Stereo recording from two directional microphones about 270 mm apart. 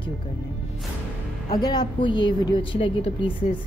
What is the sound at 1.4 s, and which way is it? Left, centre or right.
A woman's voice, centre.